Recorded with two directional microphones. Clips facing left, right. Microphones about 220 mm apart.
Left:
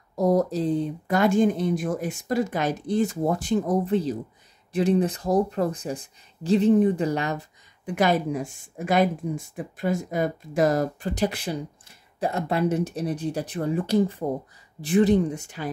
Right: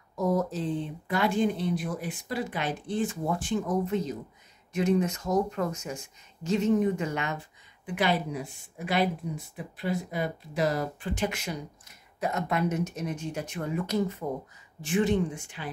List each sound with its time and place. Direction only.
0.1 s speech: 35° left (ahead or behind)